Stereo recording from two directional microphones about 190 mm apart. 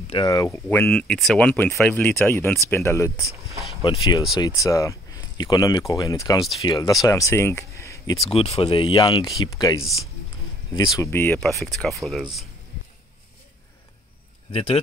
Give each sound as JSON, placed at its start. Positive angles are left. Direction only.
{"t": 0.1, "sound": "speech", "side_deg": 20}
{"t": 8.3, "sound": "speech", "side_deg": 30}
{"t": 11.0, "sound": "speech", "side_deg": 10}
{"t": 11.3, "sound": "speech", "side_deg": 0}
{"t": 14.5, "sound": "speech", "side_deg": 30}